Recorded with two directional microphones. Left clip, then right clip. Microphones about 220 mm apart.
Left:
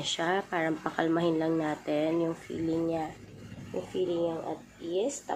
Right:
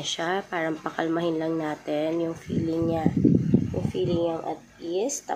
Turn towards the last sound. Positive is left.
turn(degrees=-25)  # may be behind; listen again after turning